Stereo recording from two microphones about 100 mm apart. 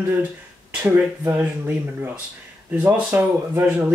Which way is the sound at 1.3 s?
20° right (ahead or behind).